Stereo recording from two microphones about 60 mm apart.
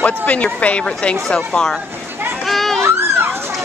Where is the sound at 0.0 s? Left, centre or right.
Left.